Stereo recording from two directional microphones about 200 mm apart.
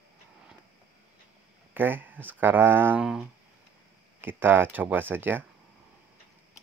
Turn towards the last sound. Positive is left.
turn(degrees=-10)  # may be behind; listen again after turning